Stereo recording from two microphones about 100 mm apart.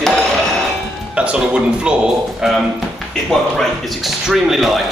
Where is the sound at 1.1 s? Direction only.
10° right (ahead or behind).